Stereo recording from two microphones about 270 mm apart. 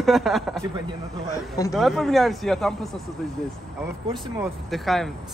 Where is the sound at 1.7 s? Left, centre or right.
Centre.